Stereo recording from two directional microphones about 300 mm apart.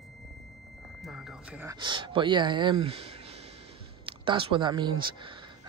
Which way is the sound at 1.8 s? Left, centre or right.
Centre.